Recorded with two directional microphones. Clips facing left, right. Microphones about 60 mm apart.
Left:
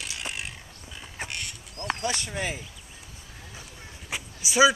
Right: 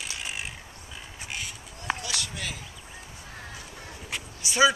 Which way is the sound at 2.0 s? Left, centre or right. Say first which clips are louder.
Left 5 dB; left.